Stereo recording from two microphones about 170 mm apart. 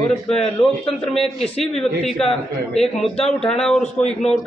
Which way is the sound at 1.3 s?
35° left (ahead or behind).